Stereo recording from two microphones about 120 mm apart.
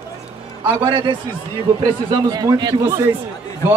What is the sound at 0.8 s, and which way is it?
Speech, 40° right (ahead or behind).